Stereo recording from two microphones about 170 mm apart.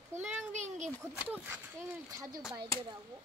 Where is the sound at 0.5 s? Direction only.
45° right (ahead or behind).